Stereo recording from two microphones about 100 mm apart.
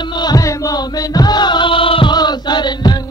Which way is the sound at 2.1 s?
45° left (ahead or behind).